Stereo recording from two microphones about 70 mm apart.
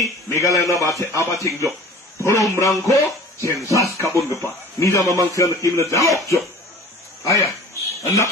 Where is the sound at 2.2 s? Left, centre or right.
Left.